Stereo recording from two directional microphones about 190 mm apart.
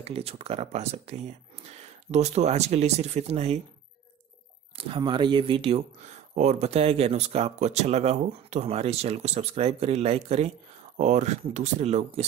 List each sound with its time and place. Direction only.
0.0 s speech: 30° right (ahead or behind)
4.7 s speech: 30° right (ahead or behind)